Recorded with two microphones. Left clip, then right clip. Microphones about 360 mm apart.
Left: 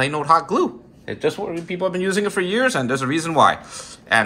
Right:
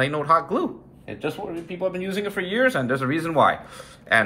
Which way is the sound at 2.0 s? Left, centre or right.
Centre.